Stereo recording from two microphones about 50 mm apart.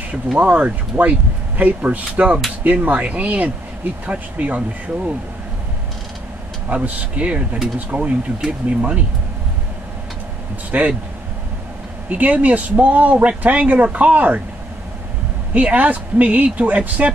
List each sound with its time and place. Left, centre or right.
0.4 s speech: right
6.7 s speech: right
8.4 s speech: right
10.7 s speech: right
12.1 s speech: right
15.5 s speech: right